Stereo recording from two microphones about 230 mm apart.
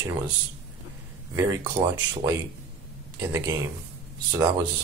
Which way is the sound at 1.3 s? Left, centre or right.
Centre.